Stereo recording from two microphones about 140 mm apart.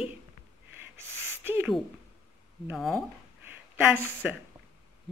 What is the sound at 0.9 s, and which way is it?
Owl, 15° right (ahead or behind).